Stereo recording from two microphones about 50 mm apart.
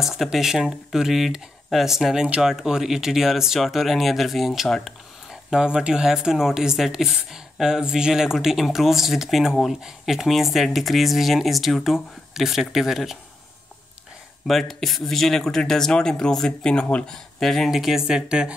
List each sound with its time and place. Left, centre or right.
0.0 s speech: centre
5.3 s speech: centre
14.5 s speech: centre
17.6 s speech: centre